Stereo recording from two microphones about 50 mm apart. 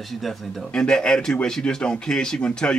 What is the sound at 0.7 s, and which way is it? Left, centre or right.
Speech, centre.